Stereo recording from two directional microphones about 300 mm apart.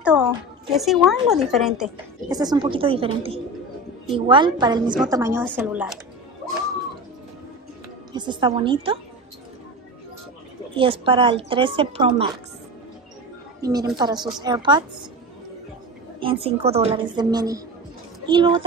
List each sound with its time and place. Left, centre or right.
0.0 s speech: centre
2.3 s a woman's voice: centre
8.1 s a woman's voice: centre
10.8 s a woman's voice: centre
13.6 s a woman's voice: centre
16.2 s a woman's voice: centre